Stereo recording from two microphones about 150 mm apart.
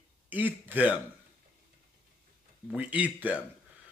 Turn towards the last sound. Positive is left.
turn(degrees=-10)  # may be behind; listen again after turning